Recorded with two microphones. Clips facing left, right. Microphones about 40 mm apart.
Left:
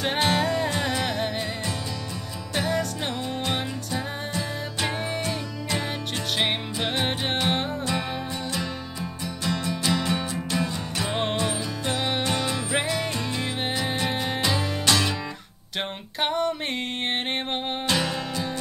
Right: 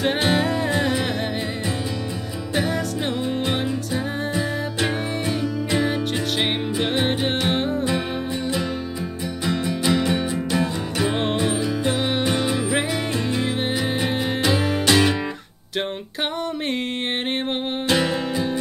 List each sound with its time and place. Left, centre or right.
0.0 s music: centre
2.5 s music: centre
6.8 s music: centre
9.4 s music: centre
17.8 s music: centre